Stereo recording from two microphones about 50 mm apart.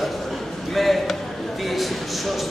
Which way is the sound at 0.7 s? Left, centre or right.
Centre.